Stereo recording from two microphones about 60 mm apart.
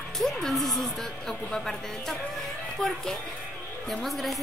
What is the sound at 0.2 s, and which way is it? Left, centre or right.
A woman's voice, centre.